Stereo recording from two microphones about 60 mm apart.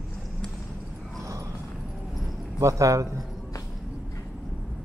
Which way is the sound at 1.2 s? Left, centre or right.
Right.